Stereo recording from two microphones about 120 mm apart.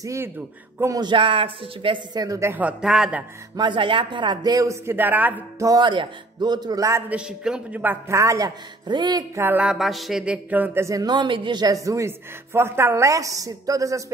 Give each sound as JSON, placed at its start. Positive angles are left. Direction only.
{"t": 0.0, "sound": "a sound", "side_deg": -25}
{"t": 1.0, "sound": "speech", "side_deg": -45}
{"t": 2.5, "sound": "a man's voice", "side_deg": -10}
{"t": 3.5, "sound": "speech", "side_deg": -40}
{"t": 5.6, "sound": "speech", "side_deg": -35}
{"t": 7.1, "sound": "a man's voice", "side_deg": -5}
{"t": 8.8, "sound": "speech", "side_deg": -40}
{"t": 9.3, "sound": "a sound", "side_deg": -20}